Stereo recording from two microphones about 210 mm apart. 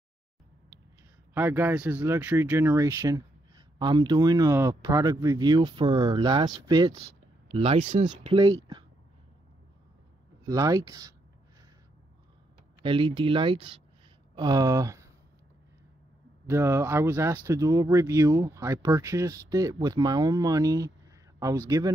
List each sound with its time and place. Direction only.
1.3 s speech: 10° right (ahead or behind); by 8.5 s 25° right (ahead or behind)
10.4 s speech: 15° right (ahead or behind)
12.8 s speech: 25° right (ahead or behind)
16.4 s speech: 15° right (ahead or behind)